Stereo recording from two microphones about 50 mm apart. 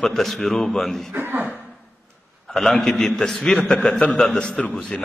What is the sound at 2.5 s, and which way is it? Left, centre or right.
A man's voice, centre.